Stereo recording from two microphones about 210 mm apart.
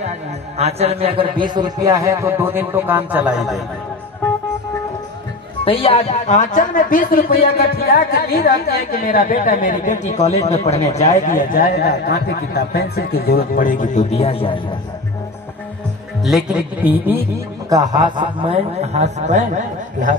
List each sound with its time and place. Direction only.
0.6 s a man's voice: 30° right (ahead or behind); by 3.6 s centre (ahead or behind)
5.7 s a woman's voice: 25° left (ahead or behind)
16.3 s a man's voice: centre (ahead or behind)
17.6 s a man's voice: 20° right (ahead or behind); by 19.4 s 35° right (ahead or behind)